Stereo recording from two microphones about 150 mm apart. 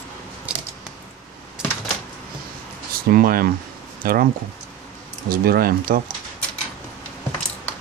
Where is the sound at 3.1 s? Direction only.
80° right.